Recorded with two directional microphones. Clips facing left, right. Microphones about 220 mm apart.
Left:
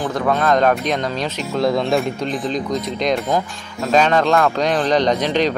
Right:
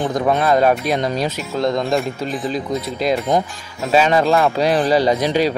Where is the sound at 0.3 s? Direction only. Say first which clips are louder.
Right 1 dB; 10° right (ahead or behind).